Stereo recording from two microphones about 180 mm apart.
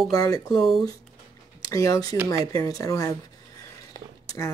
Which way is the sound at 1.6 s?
20° left (ahead or behind).